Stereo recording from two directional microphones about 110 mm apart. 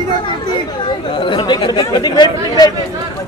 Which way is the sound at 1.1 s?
45° left (ahead or behind).